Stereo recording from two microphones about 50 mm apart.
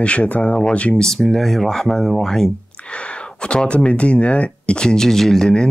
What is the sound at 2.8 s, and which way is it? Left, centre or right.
Speech, left.